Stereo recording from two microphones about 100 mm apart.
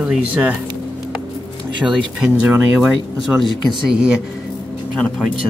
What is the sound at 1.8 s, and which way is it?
Speech, 5° right (ahead or behind).